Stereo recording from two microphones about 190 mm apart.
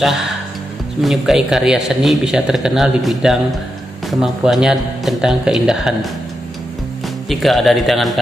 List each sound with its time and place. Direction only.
0.0 s speech: centre (ahead or behind)
7.2 s speech: centre (ahead or behind)